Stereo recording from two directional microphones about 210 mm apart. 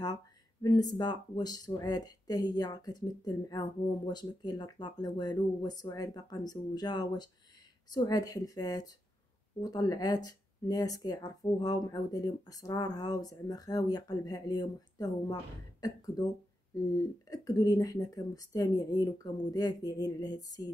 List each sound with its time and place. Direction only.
0.0 s speech: 15° left (ahead or behind)